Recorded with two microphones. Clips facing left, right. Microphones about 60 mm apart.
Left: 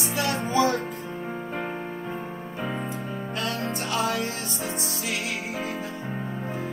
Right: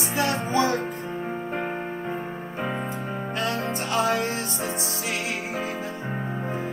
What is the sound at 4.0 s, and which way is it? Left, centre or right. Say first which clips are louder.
Music: right 4 dB; right.